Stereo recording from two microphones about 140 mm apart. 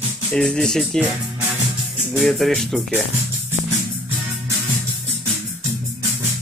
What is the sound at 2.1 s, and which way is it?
Music, centre (ahead or behind).